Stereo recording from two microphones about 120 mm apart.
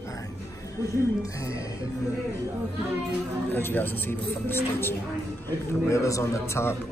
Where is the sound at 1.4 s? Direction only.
25° left (ahead or behind).